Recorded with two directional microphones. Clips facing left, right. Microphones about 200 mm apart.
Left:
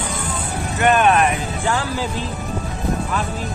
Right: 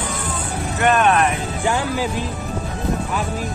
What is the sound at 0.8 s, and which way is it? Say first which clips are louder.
Music: left 1 dB; 5° left (ahead or behind).